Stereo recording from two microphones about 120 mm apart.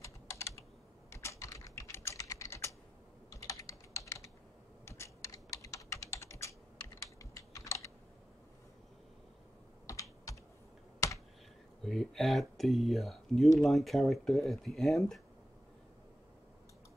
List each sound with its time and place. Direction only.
0.0 s computer keyboard: 25° left (ahead or behind)
1.1 s typing: 25° left (ahead or behind)
7.2 s computer keyboard: 25° left (ahead or behind)
9.8 s computer keyboard: 25° left (ahead or behind)
11.8 s a sound: centre (ahead or behind)
13.6 s speech: centre (ahead or behind)